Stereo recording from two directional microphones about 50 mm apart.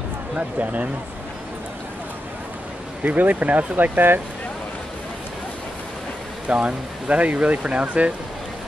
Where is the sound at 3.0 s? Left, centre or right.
Right.